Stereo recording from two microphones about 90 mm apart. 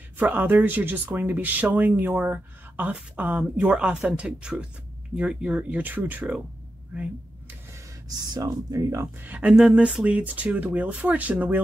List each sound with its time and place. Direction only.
0.2 s speech: 20° right (ahead or behind)
8.2 s speech: 45° right (ahead or behind)
9.2 s speech: 15° right (ahead or behind)